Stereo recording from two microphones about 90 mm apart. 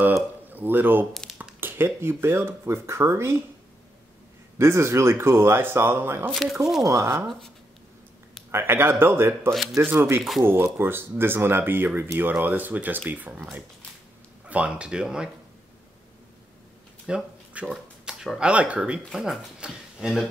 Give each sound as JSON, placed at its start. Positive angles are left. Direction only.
{"t": 0.1, "sound": "speech", "side_deg": -20}
{"t": 1.4, "sound": "a sound", "side_deg": -20}
{"t": 2.0, "sound": "speech", "side_deg": -30}
{"t": 4.6, "sound": "speech", "side_deg": -30}
{"t": 6.3, "sound": "speech", "side_deg": -5}
{"t": 6.8, "sound": "speech", "side_deg": -35}
{"t": 8.5, "sound": "speech", "side_deg": -25}
{"t": 17.0, "sound": "a sound", "side_deg": -10}
{"t": 18.5, "sound": "speech", "side_deg": -15}
{"t": 19.0, "sound": "speech", "side_deg": -5}